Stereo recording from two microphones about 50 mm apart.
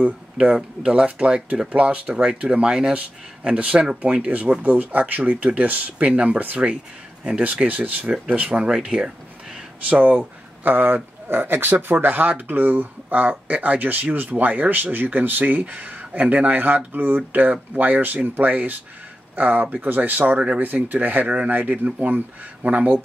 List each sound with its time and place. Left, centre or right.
0.6 s speech: centre
3.5 s speech: right
15.6 s speech: right